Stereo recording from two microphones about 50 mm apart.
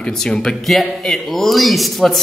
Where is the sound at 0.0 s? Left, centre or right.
Centre.